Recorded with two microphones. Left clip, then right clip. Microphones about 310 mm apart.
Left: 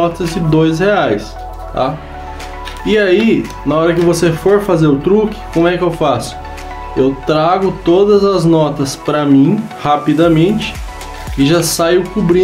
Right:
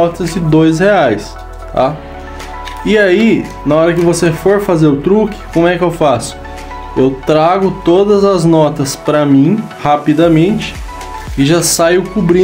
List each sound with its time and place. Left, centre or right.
0.0 s speech: centre